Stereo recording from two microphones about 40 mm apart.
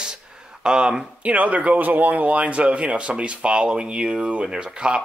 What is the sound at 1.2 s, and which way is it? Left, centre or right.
Speech, right.